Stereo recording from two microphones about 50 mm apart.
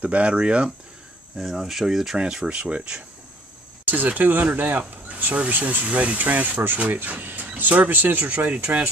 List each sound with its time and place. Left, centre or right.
0.0 s speech: right
1.4 s speech: centre
2.1 s speech: centre
3.8 s speech: right